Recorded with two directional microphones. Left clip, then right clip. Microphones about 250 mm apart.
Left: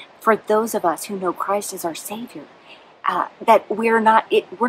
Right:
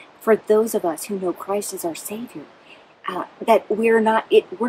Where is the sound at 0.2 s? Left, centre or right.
Centre.